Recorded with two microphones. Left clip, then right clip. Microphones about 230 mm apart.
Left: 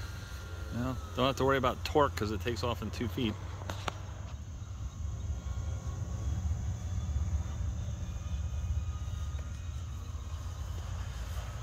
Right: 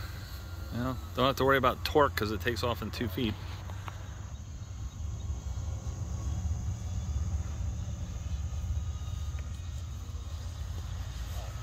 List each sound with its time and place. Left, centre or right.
0.7 s speech: centre